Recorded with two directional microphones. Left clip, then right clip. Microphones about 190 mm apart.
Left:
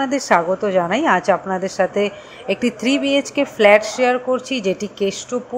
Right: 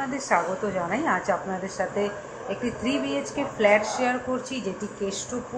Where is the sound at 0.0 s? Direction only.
45° left (ahead or behind).